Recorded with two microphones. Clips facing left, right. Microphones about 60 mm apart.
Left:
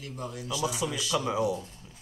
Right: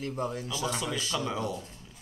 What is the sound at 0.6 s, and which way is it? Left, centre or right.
Speech, centre.